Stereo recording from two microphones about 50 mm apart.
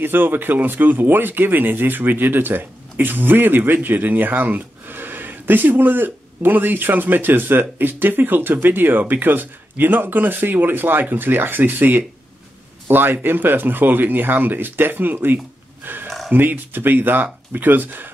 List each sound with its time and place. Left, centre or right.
0.0 s speech: right
15.8 s a sound: right
16.3 s speech: right